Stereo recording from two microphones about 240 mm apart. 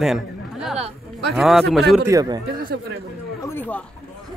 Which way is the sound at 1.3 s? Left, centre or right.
Centre.